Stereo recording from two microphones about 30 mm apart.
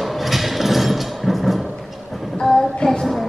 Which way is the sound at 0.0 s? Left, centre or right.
Centre.